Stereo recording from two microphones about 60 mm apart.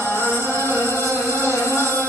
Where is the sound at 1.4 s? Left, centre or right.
Left.